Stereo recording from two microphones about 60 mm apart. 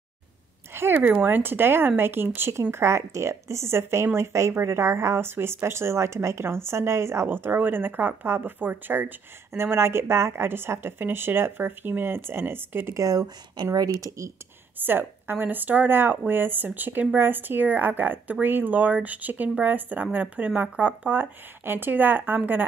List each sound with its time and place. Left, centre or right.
0.7 s a sound: right
1.2 s speech: right
7.2 s speech: right
12.9 s speech: right
14.8 s speech: right